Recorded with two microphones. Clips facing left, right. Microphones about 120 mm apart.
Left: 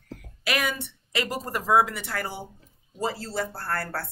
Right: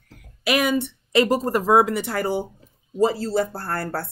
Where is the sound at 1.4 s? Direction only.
35° right (ahead or behind).